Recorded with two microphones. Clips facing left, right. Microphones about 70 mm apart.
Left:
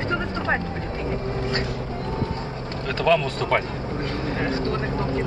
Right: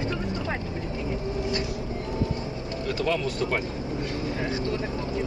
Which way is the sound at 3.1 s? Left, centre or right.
Left.